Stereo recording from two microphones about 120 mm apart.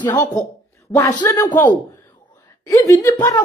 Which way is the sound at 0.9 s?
10° left (ahead or behind).